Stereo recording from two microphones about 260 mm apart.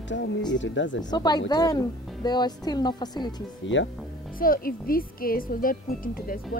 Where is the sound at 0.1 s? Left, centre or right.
Left.